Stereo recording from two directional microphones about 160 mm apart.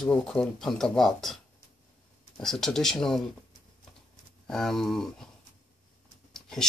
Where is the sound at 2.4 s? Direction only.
5° left (ahead or behind).